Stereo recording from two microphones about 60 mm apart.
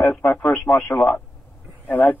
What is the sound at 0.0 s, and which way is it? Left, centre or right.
Radio, centre.